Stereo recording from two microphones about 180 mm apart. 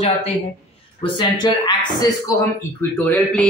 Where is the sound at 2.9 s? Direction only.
10° left (ahead or behind).